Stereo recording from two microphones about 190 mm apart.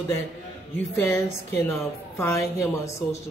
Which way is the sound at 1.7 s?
15° left (ahead or behind).